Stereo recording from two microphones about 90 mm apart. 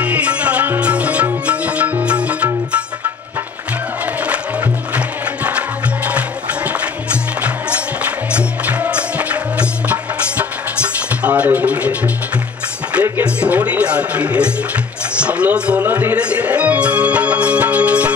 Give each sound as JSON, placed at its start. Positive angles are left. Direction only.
{"t": 0.0, "sound": "music", "side_deg": -15}
{"t": 4.9, "sound": "music", "side_deg": -15}
{"t": 13.2, "sound": "a sound", "side_deg": -10}
{"t": 15.1, "sound": "speech", "side_deg": -15}